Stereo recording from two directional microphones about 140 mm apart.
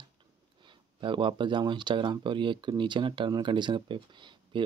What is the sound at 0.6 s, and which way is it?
Speech, 35° right (ahead or behind).